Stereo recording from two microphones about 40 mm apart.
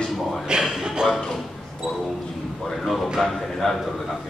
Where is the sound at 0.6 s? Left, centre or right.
Centre.